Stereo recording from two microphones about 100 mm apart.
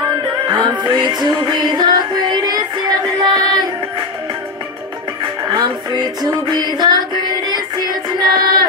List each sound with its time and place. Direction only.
0.5 s music: 45° right (ahead or behind)
5.5 s music: 40° right (ahead or behind)